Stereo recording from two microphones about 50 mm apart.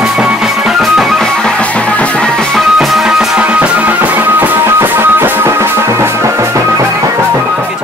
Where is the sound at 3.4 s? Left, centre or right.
Right.